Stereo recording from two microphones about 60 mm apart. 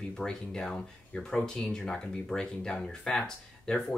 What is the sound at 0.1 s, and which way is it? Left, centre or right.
Speech, centre.